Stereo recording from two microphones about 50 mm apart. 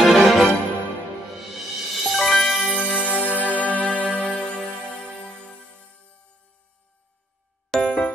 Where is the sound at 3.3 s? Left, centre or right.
Right.